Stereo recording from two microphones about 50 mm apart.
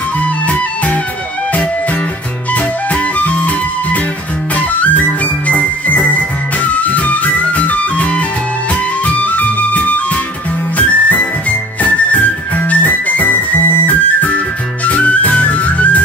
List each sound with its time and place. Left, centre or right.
0.2 s music: left
2.5 s music: left
13.8 s organ: left
14.9 s music: left